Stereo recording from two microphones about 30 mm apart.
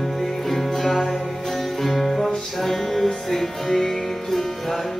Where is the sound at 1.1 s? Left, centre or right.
Left.